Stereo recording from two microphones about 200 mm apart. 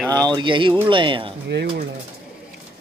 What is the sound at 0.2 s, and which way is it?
Speech, 25° right (ahead or behind).